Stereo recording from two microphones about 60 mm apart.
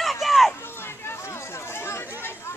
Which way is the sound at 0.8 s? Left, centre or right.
Left.